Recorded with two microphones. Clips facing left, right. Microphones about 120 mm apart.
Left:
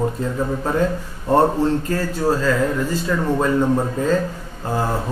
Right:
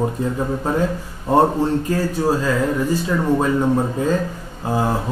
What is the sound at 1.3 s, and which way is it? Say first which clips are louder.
Speech: even; 15° right (ahead or behind).